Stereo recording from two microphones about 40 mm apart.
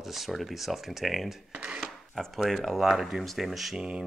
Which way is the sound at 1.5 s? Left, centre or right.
Right.